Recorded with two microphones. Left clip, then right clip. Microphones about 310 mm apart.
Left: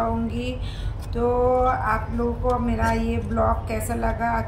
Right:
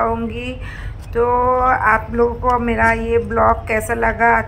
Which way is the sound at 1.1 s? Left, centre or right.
Right.